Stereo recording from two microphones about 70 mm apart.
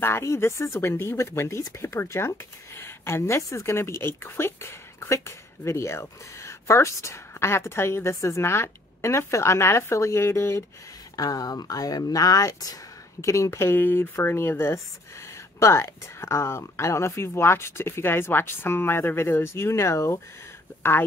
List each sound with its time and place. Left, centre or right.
0.0 s speech: left
11.1 s speech: left